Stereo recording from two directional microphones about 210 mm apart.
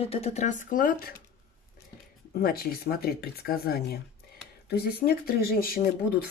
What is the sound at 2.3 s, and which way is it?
Speech, 45° left (ahead or behind).